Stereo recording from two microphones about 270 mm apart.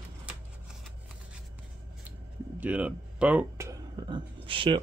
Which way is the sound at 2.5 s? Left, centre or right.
Centre.